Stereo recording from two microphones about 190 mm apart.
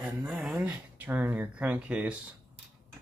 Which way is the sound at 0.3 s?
Centre (ahead or behind).